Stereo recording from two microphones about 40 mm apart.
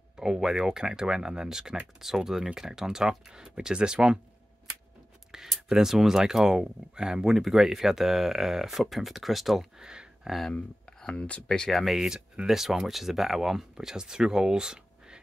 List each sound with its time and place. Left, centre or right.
0.2 s speech: centre
5.3 s speech: centre
9.8 s a sound: centre
10.5 s speech: centre
11.7 s speech: centre